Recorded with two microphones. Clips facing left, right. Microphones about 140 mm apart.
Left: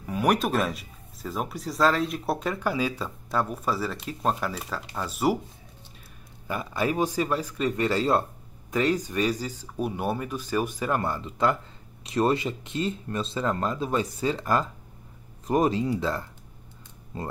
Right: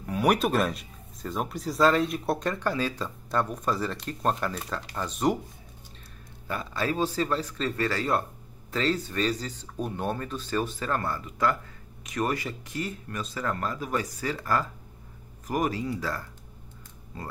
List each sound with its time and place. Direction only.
0.0 s speech: centre (ahead or behind)
6.4 s speech: 10° left (ahead or behind)